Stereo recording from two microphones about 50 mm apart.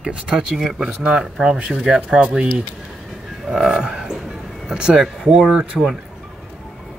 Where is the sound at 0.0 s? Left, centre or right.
Centre.